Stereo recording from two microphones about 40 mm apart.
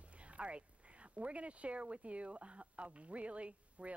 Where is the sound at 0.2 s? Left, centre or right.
Right.